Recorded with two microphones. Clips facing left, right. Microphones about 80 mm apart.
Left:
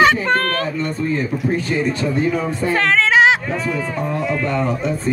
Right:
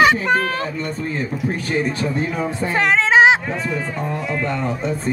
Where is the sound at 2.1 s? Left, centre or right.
Right.